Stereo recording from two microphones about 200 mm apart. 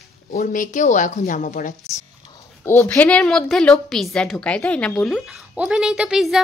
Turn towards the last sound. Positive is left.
turn(degrees=0)  # may be behind; listen again after turning